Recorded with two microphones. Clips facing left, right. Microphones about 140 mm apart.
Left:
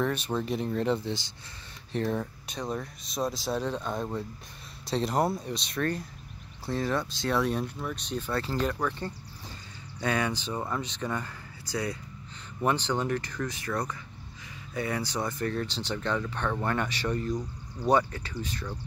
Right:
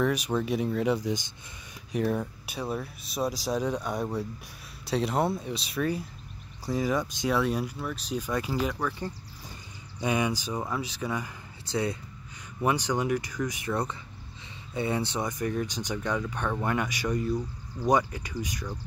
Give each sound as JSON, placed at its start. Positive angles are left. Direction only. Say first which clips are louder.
{"t": 0.0, "sound": "speech", "louder": "right 2 dB", "side_deg": -10}
{"t": 9.9, "sound": "speech", "louder": "right 1 dB", "side_deg": -15}
{"t": 11.6, "sound": "speech", "louder": "right 3 dB", "side_deg": -25}
{"t": 12.6, "sound": "speech", "louder": "right 1 dB", "side_deg": -15}